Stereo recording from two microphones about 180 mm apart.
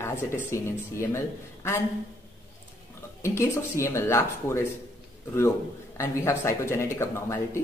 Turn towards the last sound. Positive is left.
turn(degrees=15)  # may be behind; listen again after turning